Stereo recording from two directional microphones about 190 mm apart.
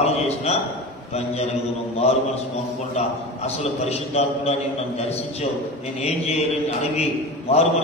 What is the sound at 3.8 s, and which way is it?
Speech, 35° left (ahead or behind).